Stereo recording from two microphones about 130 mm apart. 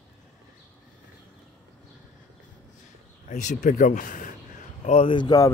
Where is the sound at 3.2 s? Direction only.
70° left (ahead or behind).